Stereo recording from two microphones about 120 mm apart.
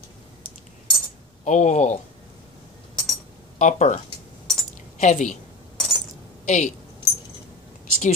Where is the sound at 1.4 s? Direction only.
85° left.